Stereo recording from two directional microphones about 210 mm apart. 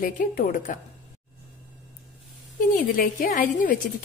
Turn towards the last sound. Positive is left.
turn(degrees=40)  # may be behind; listen again after turning